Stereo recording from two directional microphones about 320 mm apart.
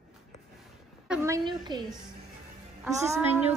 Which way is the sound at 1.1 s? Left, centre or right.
Centre.